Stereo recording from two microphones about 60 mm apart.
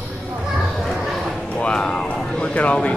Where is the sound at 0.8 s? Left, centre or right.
Centre.